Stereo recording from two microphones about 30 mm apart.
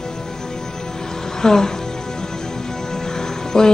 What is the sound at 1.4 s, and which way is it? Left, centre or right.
Speech, centre.